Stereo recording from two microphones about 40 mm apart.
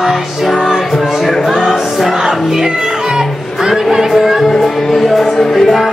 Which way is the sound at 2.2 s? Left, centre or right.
Centre.